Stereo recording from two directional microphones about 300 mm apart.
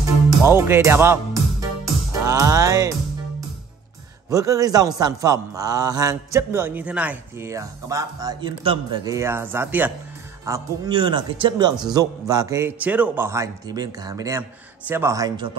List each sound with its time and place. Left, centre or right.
0.4 s a man's voice: centre
4.3 s a man's voice: centre